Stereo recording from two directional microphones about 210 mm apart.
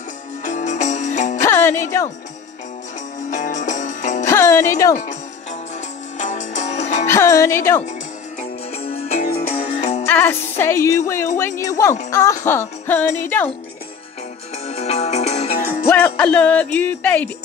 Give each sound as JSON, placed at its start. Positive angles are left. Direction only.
{"t": 0.5, "sound": "music", "side_deg": 35}
{"t": 1.4, "sound": "music", "side_deg": 10}
{"t": 3.3, "sound": "music", "side_deg": 35}
{"t": 4.3, "sound": "speech", "side_deg": 15}
{"t": 6.1, "sound": "music", "side_deg": 35}
{"t": 7.1, "sound": "speech", "side_deg": 15}
{"t": 8.7, "sound": "music", "side_deg": 30}
{"t": 10.0, "sound": "speech", "side_deg": 10}
{"t": 14.7, "sound": "music", "side_deg": 30}
{"t": 15.9, "sound": "speech", "side_deg": 5}